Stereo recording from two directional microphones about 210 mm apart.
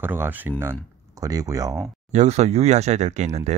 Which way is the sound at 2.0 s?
35° right (ahead or behind).